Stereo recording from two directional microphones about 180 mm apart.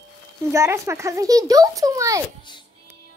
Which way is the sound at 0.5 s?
15° right (ahead or behind).